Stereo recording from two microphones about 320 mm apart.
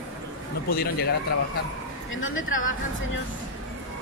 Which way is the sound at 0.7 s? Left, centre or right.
Left.